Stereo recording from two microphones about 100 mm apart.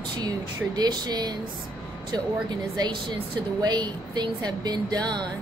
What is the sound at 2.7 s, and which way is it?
A woman's voice, 50° right (ahead or behind).